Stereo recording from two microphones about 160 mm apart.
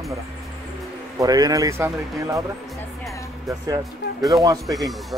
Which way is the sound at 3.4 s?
20° right (ahead or behind).